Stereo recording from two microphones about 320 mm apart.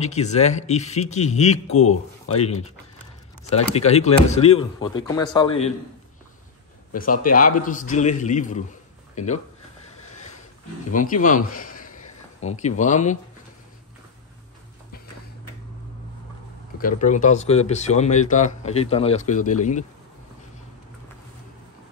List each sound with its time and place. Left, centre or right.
0.0 s speech: left
3.4 s speech: centre
7.3 s speech: left
10.9 s a man's voice: left
16.8 s speech: left